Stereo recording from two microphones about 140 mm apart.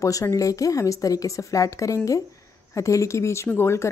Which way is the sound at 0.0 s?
20° left (ahead or behind).